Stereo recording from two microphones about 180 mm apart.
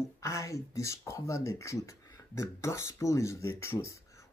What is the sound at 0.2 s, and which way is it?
Speech, 15° left (ahead or behind).